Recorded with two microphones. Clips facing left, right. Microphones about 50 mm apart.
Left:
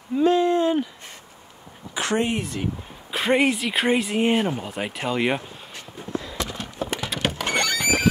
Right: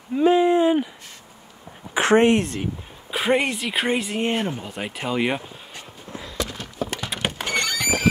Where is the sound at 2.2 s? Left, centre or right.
Right.